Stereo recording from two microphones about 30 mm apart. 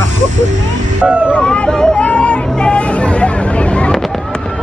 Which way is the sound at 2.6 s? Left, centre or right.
Left.